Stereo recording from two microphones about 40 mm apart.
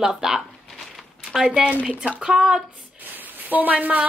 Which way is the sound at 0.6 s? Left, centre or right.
Centre.